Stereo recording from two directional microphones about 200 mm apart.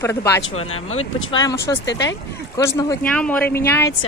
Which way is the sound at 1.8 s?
60° left (ahead or behind).